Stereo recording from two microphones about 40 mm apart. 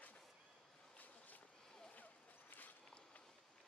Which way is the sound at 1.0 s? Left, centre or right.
Left.